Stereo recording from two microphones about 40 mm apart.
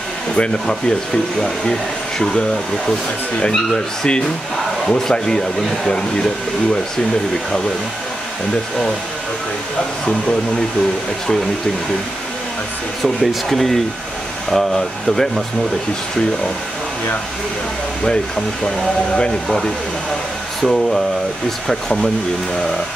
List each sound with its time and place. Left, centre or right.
0.4 s speech: centre
13.0 s speech: centre
18.0 s speech: centre
20.6 s speech: centre